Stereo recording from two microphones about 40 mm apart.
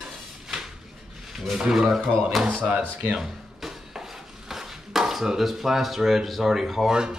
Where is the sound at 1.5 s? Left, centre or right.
Centre.